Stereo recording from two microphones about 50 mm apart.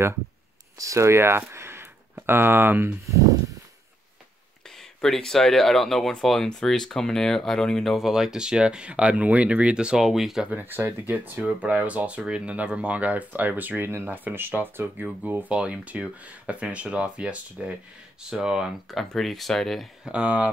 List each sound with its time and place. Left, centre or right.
0.8 s speech: right
4.6 s speech: centre
7.9 s speech: centre
10.4 s speech: right
10.7 s speech: right
11.1 s speech: right
15.5 s speech: right
18.9 s speech: centre
20.1 s speech: right